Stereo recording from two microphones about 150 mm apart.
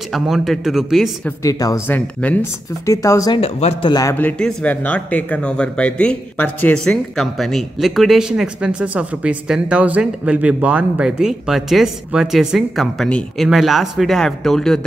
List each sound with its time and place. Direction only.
0.1 s speech: centre (ahead or behind)
1.4 s speech: 25° left (ahead or behind)
1.9 s speech: 10° left (ahead or behind)
2.9 s speech: 20° left (ahead or behind)
3.3 s speech: 45° left (ahead or behind)
3.9 s speech: 20° left (ahead or behind)
4.2 s speech: 5° left (ahead or behind)